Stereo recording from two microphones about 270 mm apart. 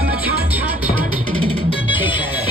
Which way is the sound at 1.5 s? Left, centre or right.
Centre.